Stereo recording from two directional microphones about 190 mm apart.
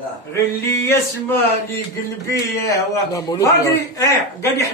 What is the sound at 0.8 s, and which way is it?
A man's voice, 10° left (ahead or behind).